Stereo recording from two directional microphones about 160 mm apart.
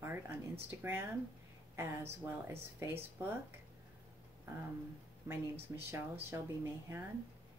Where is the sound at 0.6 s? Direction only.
15° right (ahead or behind).